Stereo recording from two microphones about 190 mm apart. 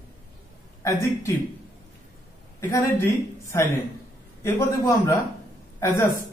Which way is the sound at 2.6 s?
15° left (ahead or behind).